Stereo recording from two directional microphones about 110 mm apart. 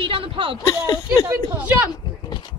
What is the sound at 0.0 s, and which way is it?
Speech, 55° right (ahead or behind).